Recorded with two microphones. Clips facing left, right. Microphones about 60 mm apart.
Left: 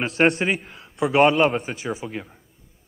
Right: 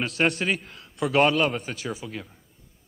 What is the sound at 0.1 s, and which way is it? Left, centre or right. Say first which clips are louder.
Speech: left 7 dB; left.